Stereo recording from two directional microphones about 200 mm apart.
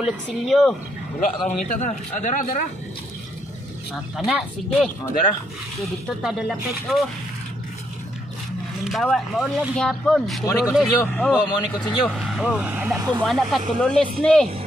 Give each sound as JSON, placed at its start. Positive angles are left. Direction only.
{"t": 0.0, "sound": "speech", "side_deg": 0}
{"t": 1.2, "sound": "a man's voice", "side_deg": 40}
{"t": 4.2, "sound": "speech", "side_deg": 0}
{"t": 8.8, "sound": "speech", "side_deg": 0}